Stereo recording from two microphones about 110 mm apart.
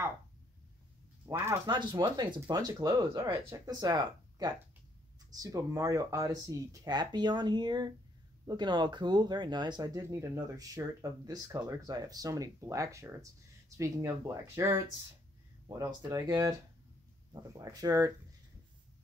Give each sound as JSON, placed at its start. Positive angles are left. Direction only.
{"t": 1.2, "sound": "speech", "side_deg": -20}
{"t": 1.7, "sound": "speech", "side_deg": -40}
{"t": 10.0, "sound": "speech", "side_deg": -25}